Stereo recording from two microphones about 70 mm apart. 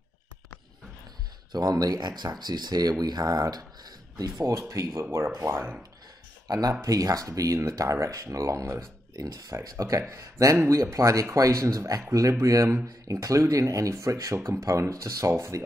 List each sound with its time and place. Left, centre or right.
1.5 s speech: right
6.4 s speech: right